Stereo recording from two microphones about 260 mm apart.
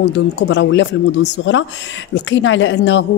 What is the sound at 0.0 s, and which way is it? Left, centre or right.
A woman's voice, left.